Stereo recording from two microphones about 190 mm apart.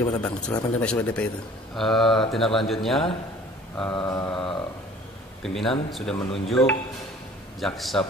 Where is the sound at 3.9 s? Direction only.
20° left (ahead or behind).